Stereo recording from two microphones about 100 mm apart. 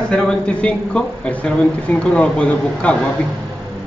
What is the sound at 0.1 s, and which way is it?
Speech, 10° left (ahead or behind).